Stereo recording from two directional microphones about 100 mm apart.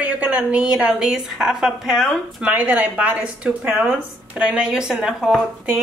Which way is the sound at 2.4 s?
15° right (ahead or behind).